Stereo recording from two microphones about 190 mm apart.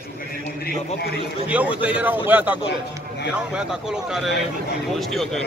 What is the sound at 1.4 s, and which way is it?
A man's voice, 5° right (ahead or behind).